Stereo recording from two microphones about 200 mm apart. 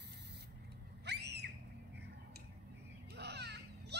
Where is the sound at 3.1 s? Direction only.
55° right (ahead or behind).